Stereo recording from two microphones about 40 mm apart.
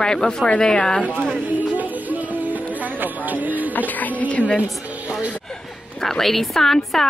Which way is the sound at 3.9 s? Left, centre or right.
Left.